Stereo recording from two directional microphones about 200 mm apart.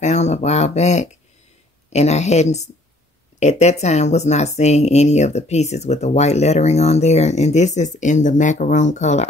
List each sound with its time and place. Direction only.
0.0 s speech: 35° left (ahead or behind)